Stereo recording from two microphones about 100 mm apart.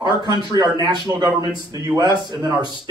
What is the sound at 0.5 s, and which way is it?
A man's voice, 40° right (ahead or behind).